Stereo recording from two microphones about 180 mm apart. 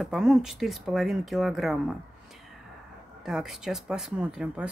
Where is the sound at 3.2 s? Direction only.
Centre (ahead or behind).